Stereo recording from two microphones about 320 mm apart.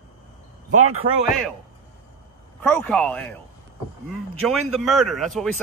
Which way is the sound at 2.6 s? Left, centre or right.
Centre.